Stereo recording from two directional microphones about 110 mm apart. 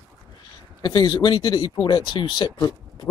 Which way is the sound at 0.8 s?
40° left (ahead or behind).